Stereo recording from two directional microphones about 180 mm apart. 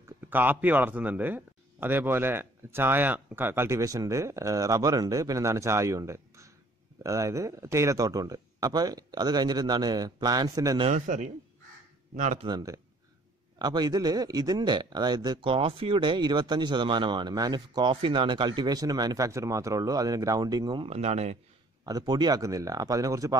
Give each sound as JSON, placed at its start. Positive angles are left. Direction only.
{"t": 0.3, "sound": "a man's voice", "side_deg": -10}
{"t": 10.9, "sound": "a man's voice", "side_deg": -40}
{"t": 12.4, "sound": "a man's voice", "side_deg": -20}
{"t": 20.9, "sound": "speech", "side_deg": -40}
{"t": 21.8, "sound": "a man's voice", "side_deg": -20}